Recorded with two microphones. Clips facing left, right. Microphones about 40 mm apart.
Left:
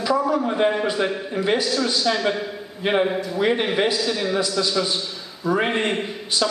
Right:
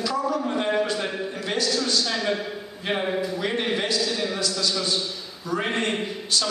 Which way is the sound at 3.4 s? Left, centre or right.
Centre.